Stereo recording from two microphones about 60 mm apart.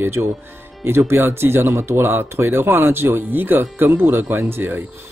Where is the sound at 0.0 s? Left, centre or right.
Right.